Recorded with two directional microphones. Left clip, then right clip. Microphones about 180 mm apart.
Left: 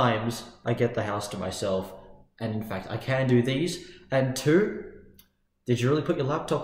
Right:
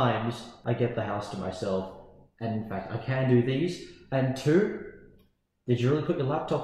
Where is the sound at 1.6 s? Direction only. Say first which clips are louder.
Left 2 dB; 20° left (ahead or behind).